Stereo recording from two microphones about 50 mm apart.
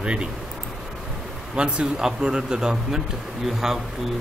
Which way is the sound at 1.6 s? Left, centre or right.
Right.